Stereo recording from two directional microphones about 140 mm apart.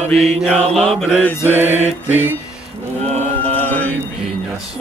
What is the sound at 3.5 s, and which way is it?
Mantra, 10° left (ahead or behind).